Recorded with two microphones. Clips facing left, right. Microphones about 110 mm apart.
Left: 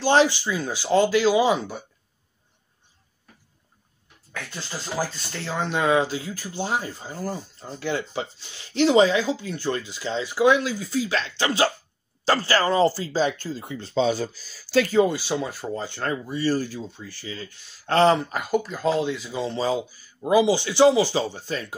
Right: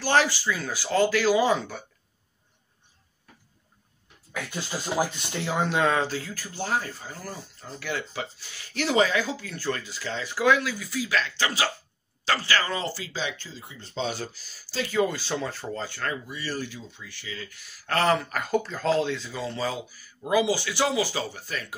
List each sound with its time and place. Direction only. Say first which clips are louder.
0.0 s speech: left 4 dB; 20° left (ahead or behind)
4.3 s speech: right 2 dB; 10° right (ahead or behind)
5.9 s speech: left 4 dB; 15° left (ahead or behind); by 13.7 s 45° left (ahead or behind)
13.7 s speech: left 11 dB; 90° left
14.6 s speech: left 11 dB; 65° left (ahead or behind)
14.9 s speech: left 3 dB; 25° left (ahead or behind)
15.1 s speech: left 3 dB; 15° left (ahead or behind)
18.4 s speech: left 3 dB; 5° left (ahead or behind)
19.3 s speech: left 5 dB; 25° left (ahead or behind)